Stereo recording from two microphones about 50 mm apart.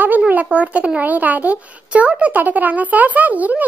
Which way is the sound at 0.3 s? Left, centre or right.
Right.